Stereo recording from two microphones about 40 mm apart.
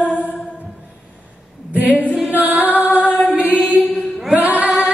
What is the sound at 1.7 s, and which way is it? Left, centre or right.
A capella, right.